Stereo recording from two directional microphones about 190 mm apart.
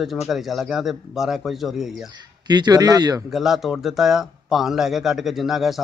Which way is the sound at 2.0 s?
20° right (ahead or behind).